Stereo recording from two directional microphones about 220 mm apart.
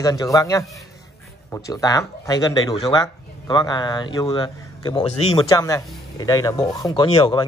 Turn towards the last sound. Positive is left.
turn(degrees=25)  # may be behind; listen again after turning